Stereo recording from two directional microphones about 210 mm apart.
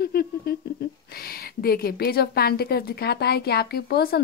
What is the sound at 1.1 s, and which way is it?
A woman's voice, 45° left (ahead or behind).